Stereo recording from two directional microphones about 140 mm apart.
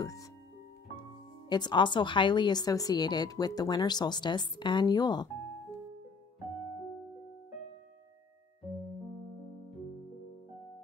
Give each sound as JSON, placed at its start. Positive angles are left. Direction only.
{"t": 0.0, "sound": "music", "side_deg": 25}
{"t": 1.5, "sound": "a woman's voice", "side_deg": 30}